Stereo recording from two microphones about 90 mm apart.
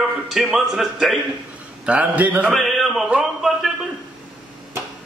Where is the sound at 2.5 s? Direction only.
Centre (ahead or behind).